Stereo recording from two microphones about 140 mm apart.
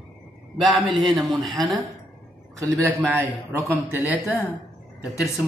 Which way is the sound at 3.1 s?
15° right (ahead or behind).